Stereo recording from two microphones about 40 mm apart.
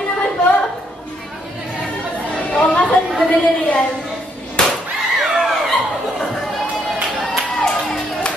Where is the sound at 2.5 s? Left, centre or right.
Left.